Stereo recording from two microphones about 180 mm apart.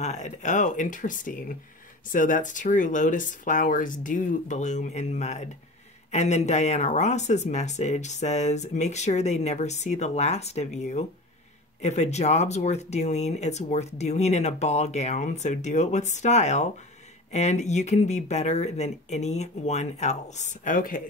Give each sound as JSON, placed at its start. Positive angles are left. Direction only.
{"t": 0.0, "sound": "speech", "side_deg": 40}